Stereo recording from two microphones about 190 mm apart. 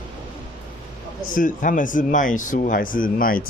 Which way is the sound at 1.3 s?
45° left (ahead or behind).